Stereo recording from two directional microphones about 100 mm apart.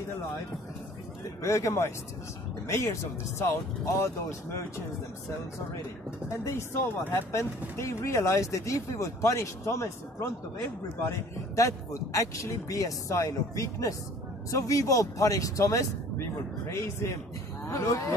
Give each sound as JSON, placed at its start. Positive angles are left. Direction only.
{"t": 1.4, "sound": "a man's voice", "side_deg": 30}
{"t": 6.4, "sound": "a man's voice", "side_deg": 25}
{"t": 17.6, "sound": "speech", "side_deg": 30}